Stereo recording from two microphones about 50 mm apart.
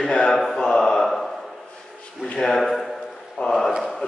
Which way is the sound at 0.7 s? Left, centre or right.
Centre.